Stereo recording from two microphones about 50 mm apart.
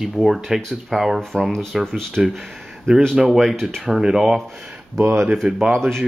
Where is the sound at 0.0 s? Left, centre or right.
Centre.